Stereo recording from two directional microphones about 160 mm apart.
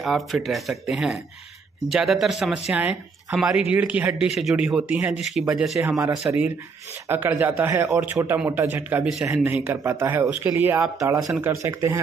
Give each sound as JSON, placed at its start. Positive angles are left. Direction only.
{"t": 0.0, "sound": "speech", "side_deg": 0}